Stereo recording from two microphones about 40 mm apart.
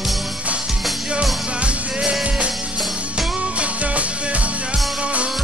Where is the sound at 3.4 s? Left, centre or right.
Right.